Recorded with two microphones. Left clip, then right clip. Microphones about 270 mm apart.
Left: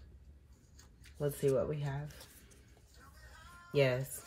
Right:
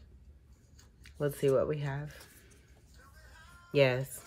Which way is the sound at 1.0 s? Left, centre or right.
Centre.